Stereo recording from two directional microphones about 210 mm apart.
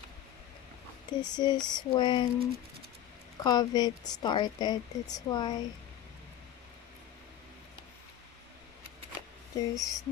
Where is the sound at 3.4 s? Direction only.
20° left (ahead or behind).